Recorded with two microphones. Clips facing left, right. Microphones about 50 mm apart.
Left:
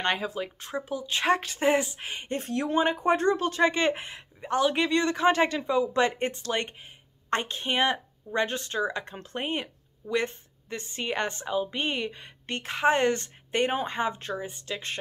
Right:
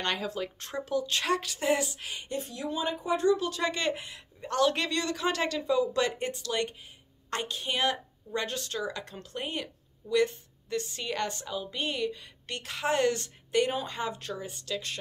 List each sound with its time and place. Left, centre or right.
0.0 s speech: left
4.4 s a woman's voice: centre